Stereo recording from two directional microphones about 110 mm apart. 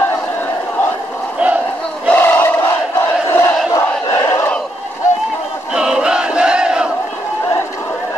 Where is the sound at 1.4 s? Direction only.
10° right (ahead or behind).